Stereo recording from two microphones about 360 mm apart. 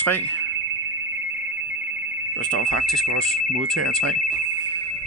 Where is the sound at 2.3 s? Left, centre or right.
Right.